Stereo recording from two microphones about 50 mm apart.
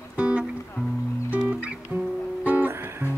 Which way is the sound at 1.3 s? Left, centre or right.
Right.